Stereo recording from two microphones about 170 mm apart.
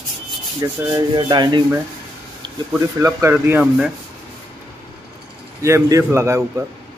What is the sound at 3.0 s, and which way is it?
Speech, 15° right (ahead or behind).